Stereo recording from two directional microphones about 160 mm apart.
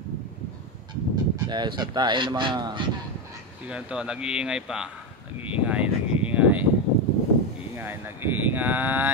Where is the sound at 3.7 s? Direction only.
5° right (ahead or behind).